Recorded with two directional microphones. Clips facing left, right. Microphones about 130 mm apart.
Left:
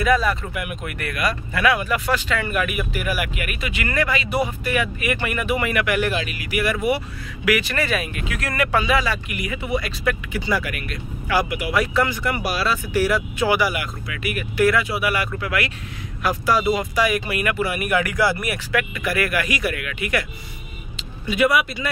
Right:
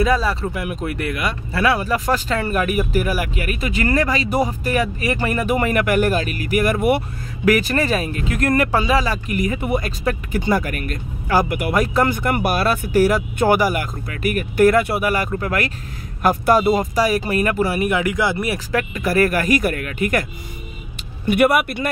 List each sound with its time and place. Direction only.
0.0 s speech: 30° right (ahead or behind)
17.8 s speech: 20° right (ahead or behind); by 20.2 s 45° right (ahead or behind)
20.9 s speech: 55° right (ahead or behind)